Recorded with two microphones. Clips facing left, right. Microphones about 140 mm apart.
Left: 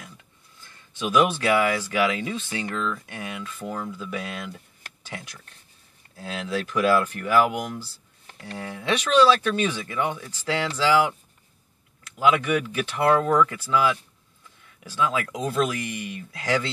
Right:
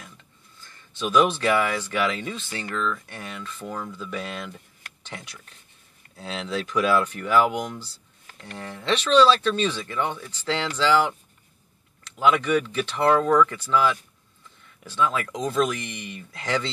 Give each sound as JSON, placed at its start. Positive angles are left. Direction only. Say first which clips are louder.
{"t": 0.6, "sound": "speech", "louder": "even", "side_deg": 10}
{"t": 5.0, "sound": "a sound", "louder": "left 1 dB", "side_deg": 5}
{"t": 6.1, "sound": "speech", "louder": "left 1 dB", "side_deg": 5}
{"t": 12.2, "sound": "speech", "louder": "right 1 dB", "side_deg": 5}